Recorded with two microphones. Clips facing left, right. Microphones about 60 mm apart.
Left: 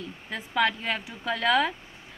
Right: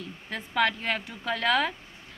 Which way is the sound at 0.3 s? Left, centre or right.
Centre.